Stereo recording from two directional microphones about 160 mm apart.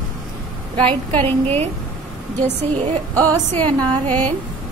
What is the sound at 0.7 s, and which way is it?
Speech, 30° right (ahead or behind).